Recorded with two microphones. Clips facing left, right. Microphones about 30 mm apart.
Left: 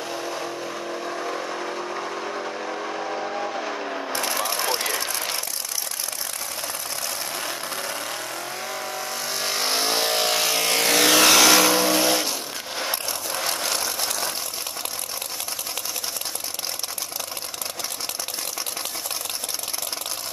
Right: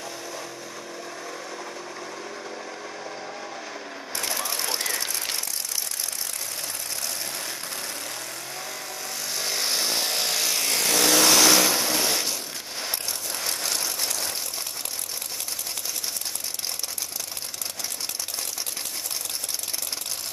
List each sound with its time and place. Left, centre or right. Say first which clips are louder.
1.0 s vehicle: left 8 dB; left
4.6 s vehicle: left 4 dB; centre
9.3 s vehicle: left 2 dB; centre
12.7 s a sound: left 4 dB; centre
13.8 s vehicle: left 3 dB; centre